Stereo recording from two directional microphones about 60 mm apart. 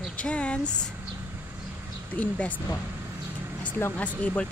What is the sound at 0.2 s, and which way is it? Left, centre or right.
Speech, centre.